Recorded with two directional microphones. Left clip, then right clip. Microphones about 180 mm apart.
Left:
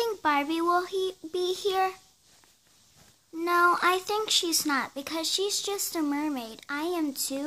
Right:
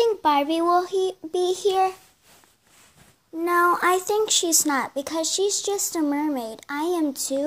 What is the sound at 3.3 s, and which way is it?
A child's voice, 15° left (ahead or behind).